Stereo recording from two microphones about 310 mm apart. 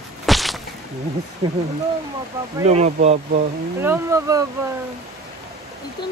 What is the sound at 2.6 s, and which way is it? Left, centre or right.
Speech, centre.